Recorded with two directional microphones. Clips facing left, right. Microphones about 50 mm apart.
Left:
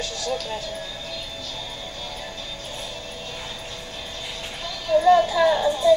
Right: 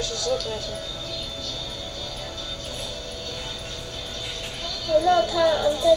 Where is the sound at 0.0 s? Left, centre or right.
Left.